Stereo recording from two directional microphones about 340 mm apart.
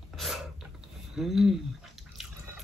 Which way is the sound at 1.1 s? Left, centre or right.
Centre.